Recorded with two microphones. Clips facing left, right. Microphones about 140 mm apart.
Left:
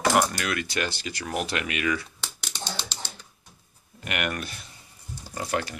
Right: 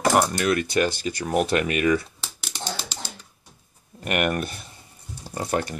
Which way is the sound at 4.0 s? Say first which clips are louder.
Right 6 dB; 40° right (ahead or behind).